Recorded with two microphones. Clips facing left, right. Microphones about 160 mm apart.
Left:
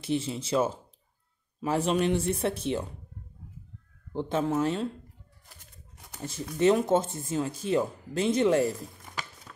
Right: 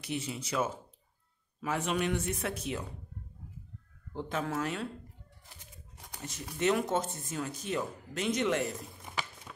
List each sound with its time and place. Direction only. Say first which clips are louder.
0.0 s speech: left 7 dB; 30° left (ahead or behind)
4.1 s speech: left 7 dB; 25° left (ahead or behind)
6.2 s speech: left 7 dB; 30° left (ahead or behind)
9.1 s a sound: right 2 dB; 15° right (ahead or behind)